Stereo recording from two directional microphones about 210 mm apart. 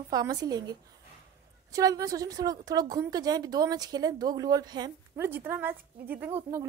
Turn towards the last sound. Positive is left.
turn(degrees=-10)  # may be behind; listen again after turning